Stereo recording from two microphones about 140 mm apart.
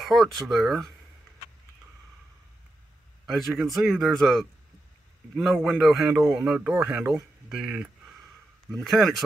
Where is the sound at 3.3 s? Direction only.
Centre (ahead or behind).